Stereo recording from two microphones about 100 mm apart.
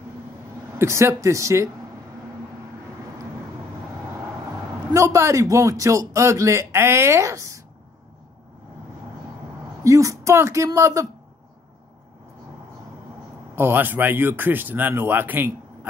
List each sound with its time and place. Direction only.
0.7 s speech: 30° right (ahead or behind)
4.9 s a man's voice: 30° right (ahead or behind)
9.8 s speech: 30° right (ahead or behind)
13.6 s speech: 20° right (ahead or behind)